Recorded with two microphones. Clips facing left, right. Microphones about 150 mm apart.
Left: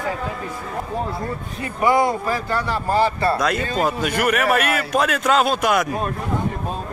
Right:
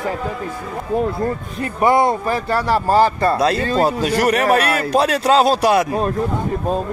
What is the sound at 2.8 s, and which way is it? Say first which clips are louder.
A man's voice: right 2 dB; 35° right (ahead or behind).